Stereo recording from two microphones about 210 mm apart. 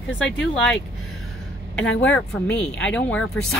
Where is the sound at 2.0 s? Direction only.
5° left (ahead or behind).